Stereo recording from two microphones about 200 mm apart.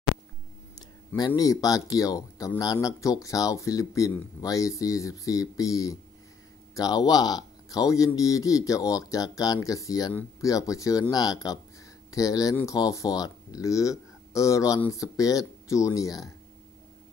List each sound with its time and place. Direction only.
0.7 s speech: 20° left (ahead or behind)